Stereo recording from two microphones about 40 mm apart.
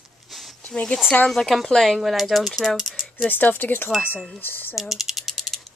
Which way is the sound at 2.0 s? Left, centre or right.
Centre.